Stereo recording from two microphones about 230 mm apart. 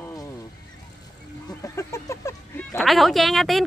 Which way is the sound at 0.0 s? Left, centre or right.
Centre.